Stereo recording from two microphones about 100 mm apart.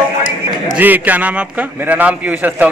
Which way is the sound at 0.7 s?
15° right (ahead or behind).